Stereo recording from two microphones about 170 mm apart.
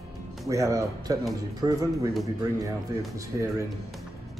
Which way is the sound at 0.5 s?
20° right (ahead or behind).